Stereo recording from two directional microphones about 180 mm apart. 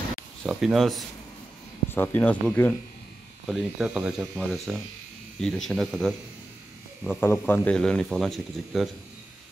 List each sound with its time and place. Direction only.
0.5 s speech: centre (ahead or behind)
1.9 s speech: 10° left (ahead or behind)
3.4 s speech: centre (ahead or behind)
7.2 s speech: 10° left (ahead or behind)